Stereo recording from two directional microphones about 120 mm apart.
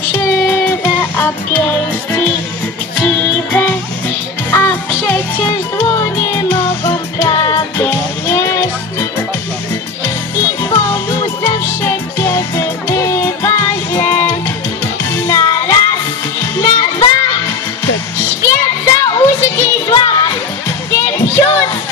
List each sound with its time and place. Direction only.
0.1 s music: 20° left (ahead or behind)
7.2 s music: 30° left (ahead or behind)
10.0 s music: 20° left (ahead or behind)
15.2 s music: 30° left (ahead or behind)